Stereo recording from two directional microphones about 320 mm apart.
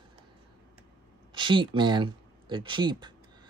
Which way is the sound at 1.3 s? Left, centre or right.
Centre.